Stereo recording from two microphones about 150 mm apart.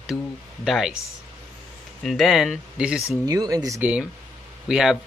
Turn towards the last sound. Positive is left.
turn(degrees=-5)  # may be behind; listen again after turning